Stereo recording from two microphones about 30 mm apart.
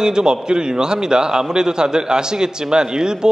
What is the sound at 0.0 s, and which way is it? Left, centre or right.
A man's voice, right.